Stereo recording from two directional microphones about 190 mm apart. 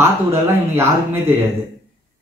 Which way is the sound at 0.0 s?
10° right (ahead or behind).